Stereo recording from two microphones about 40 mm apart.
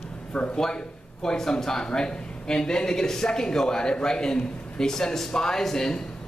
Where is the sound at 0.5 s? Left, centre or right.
Centre.